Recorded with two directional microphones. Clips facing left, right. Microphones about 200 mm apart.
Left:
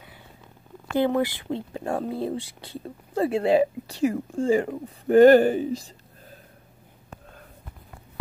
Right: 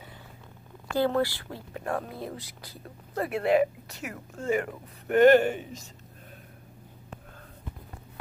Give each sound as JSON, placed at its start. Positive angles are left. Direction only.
{"t": 0.8, "sound": "speech", "side_deg": 20}